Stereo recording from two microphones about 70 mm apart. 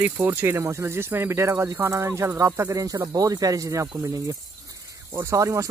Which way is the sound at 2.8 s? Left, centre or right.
Right.